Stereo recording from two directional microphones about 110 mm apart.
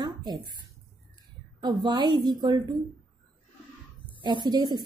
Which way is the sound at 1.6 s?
45° right (ahead or behind).